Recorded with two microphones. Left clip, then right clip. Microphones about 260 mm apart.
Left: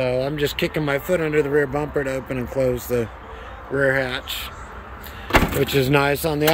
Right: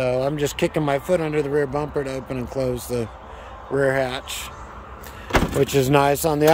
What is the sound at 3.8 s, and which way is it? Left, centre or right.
Speech, centre.